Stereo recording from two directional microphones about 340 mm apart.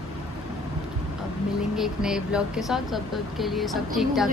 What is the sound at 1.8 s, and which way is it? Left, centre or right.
A woman's voice, centre.